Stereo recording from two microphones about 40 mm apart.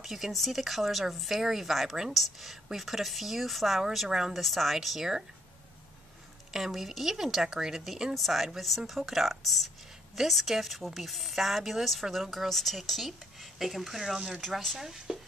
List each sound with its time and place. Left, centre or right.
0.0 s speech: centre
6.5 s speech: centre
14.1 s speech: centre